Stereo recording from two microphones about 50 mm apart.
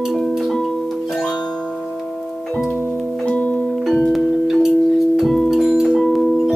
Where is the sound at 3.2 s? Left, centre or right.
Left.